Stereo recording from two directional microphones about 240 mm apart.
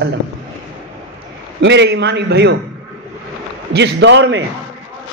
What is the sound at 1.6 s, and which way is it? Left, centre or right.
Speech, right.